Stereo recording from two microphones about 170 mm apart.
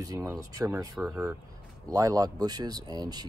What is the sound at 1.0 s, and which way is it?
Speech, 5° right (ahead or behind).